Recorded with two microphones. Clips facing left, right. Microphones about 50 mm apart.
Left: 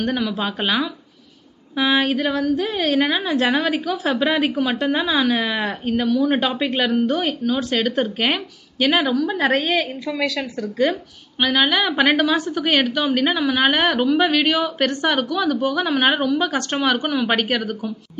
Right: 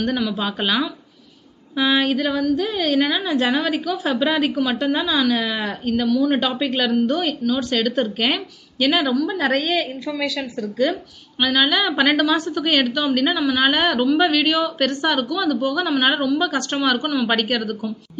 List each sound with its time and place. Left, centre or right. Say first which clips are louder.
0.0 s a woman's voice: even; left
10.2 s speech: left 2 dB; left
11.3 s a woman's voice: even; centre